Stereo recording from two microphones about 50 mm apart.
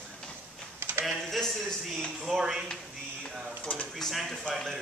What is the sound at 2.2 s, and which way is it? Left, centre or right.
Speech, centre.